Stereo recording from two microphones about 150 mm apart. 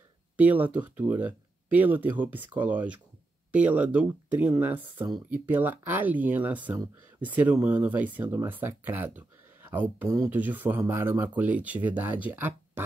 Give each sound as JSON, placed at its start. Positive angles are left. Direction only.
{"t": 0.4, "sound": "speech", "side_deg": -10}
{"t": 10.4, "sound": "speech", "side_deg": -10}